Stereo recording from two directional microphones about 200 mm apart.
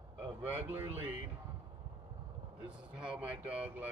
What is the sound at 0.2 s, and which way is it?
Speech, 10° right (ahead or behind).